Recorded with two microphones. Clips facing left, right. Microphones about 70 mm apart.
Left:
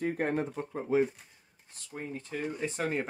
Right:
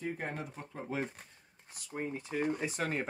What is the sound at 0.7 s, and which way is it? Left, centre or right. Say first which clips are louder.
Speech: left 10 dB; centre.